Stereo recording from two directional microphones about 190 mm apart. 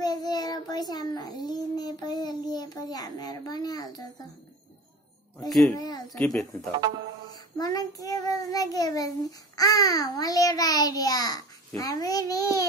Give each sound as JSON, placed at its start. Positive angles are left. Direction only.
{"t": 0.0, "sound": "child singing", "side_deg": 20}
{"t": 5.8, "sound": "a sound", "side_deg": 20}
{"t": 6.0, "sound": "a child's voice", "side_deg": 5}
{"t": 7.3, "sound": "a child's voice", "side_deg": 20}